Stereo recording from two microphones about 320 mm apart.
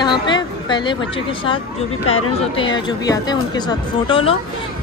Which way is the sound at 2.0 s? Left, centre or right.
Left.